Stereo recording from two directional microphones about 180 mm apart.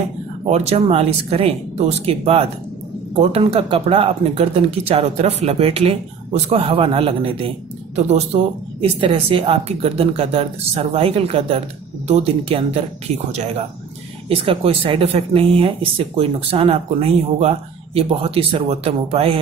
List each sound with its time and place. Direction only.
0.5 s speech: 35° right (ahead or behind)